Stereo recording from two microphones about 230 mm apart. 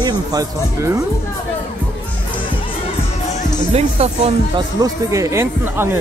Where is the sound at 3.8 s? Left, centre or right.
Right.